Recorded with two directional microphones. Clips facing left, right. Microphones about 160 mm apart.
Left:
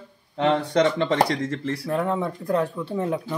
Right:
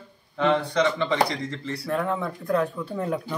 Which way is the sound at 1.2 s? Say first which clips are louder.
Left 3 dB; 45° left (ahead or behind).